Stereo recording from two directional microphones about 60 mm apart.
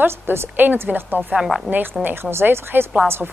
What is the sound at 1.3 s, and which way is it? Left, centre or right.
Speech, centre.